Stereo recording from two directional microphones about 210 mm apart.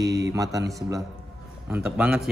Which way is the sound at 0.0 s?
15° right (ahead or behind).